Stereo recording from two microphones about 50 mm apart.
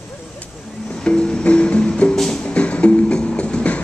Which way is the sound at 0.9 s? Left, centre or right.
Centre.